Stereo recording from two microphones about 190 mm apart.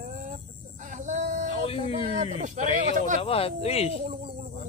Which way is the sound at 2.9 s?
40° right (ahead or behind).